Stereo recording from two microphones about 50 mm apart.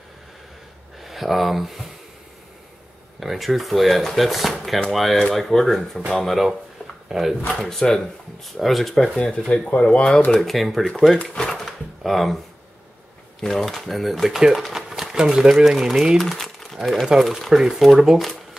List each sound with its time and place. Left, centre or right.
1.0 s speech: centre
3.2 s speech: centre
7.4 s speech: centre
8.5 s speech: centre
9.5 s speech: left
10.4 s speech: centre
11.3 s drawer open or close: centre
13.4 s speech: centre
16.2 s a sound: centre
16.8 s speech: centre